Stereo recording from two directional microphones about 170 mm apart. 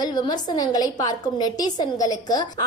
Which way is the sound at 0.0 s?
25° left (ahead or behind).